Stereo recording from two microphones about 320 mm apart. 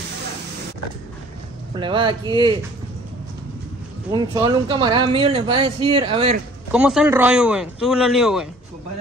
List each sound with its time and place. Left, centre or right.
1.8 s speech: centre
4.1 s speech: centre
6.7 s speech: centre